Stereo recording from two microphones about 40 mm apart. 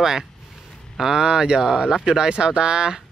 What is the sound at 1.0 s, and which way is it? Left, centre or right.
Speech, centre.